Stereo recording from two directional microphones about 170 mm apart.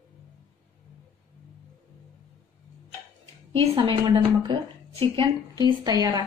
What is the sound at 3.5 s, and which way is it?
A woman's voice, 30° right (ahead or behind).